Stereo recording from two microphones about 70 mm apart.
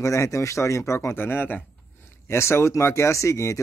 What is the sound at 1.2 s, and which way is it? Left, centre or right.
Speech, left.